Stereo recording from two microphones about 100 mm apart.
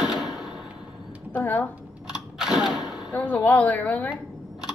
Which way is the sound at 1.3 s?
15° left (ahead or behind).